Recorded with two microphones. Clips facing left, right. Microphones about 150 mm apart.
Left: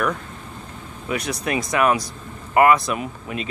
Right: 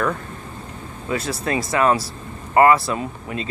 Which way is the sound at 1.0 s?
15° left (ahead or behind).